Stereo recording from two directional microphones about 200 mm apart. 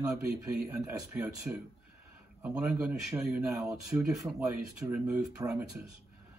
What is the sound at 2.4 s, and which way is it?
Speech, 5° right (ahead or behind).